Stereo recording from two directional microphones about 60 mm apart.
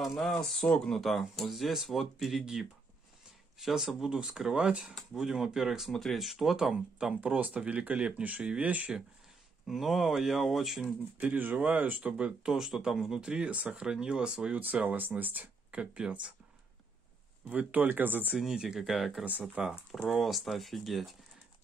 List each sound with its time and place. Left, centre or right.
0.0 s speech: centre
3.5 s speech: centre; by 8.9 s right
9.7 s speech: centre
10.8 s speech: right
12.1 s speech: centre
14.5 s speech: right
17.5 s speech: right
18.4 s speech: centre
19.6 s speech: centre
20.1 s speech: centre